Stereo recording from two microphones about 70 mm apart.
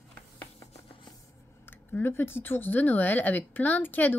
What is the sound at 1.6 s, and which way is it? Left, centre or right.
A woman's voice, left.